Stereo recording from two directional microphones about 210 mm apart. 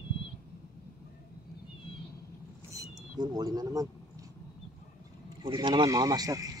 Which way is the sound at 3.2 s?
20° right (ahead or behind).